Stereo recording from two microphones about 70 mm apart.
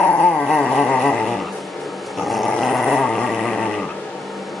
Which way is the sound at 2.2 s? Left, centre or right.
Centre.